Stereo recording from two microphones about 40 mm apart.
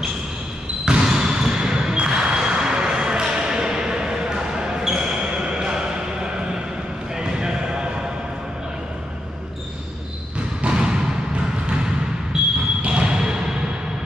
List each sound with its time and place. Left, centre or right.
0.8 s basketball bounce: centre
10.7 s a sound: centre
12.3 s basketball bounce: centre